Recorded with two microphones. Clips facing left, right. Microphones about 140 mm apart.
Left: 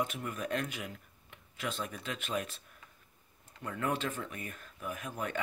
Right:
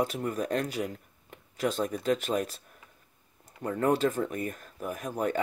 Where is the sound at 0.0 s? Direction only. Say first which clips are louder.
Right 6 dB; 35° right (ahead or behind).